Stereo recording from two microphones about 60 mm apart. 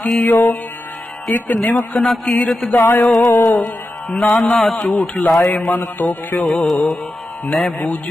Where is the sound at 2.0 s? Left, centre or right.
Centre.